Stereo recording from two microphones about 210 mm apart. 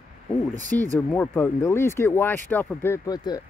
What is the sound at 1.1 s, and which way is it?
Speech, 10° left (ahead or behind).